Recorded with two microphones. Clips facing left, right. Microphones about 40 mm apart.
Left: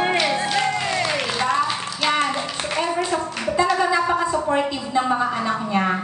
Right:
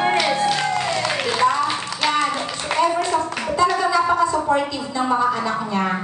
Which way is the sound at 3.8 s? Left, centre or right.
Left.